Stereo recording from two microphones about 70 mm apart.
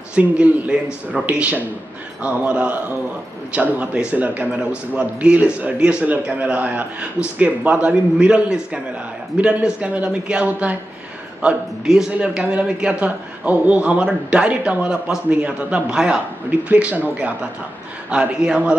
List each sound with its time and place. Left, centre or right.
0.1 s a man's voice: centre
11.4 s a man's voice: centre
16.4 s a man's voice: right